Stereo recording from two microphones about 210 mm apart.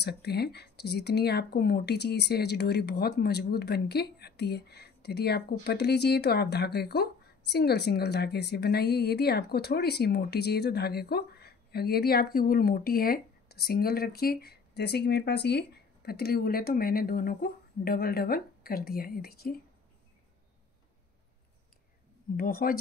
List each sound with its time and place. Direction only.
0.0 s speech: 50° left (ahead or behind)
22.4 s speech: 45° left (ahead or behind)